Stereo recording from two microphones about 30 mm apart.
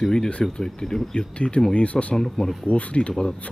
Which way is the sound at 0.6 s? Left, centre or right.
Centre.